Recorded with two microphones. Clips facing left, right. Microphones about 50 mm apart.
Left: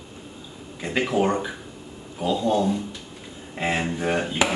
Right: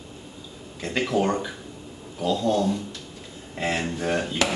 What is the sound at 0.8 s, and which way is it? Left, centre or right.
Speech, centre.